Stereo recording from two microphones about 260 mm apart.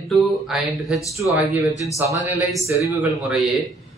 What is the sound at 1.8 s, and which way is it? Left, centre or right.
A man's voice, centre.